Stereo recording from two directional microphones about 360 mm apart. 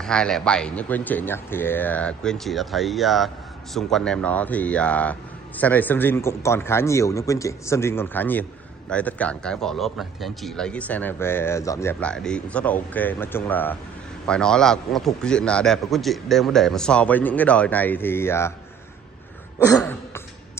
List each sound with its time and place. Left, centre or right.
0.0 s speech: centre
19.6 s throat clearing: centre